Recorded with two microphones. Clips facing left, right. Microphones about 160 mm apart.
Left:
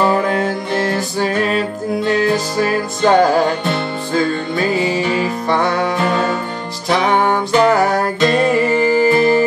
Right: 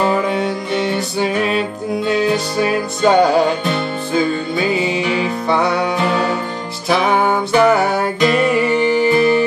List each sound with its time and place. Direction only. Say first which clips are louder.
0.4 s music: left 1 dB; centre (ahead or behind)
8.3 s music: left 1 dB; 35° left (ahead or behind)